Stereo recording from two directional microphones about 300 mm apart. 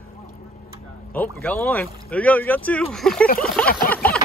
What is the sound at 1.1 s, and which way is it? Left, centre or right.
Speech, centre.